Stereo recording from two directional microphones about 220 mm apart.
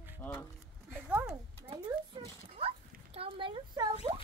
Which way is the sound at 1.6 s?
20° right (ahead or behind).